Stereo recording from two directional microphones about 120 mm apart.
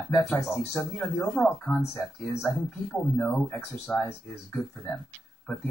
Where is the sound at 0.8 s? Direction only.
10° left (ahead or behind).